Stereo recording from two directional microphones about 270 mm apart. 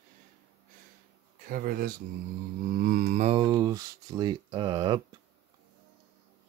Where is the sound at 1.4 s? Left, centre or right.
Right; by 5.0 s centre.